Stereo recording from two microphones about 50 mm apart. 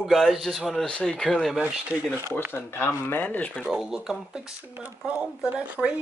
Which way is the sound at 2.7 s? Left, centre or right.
Left.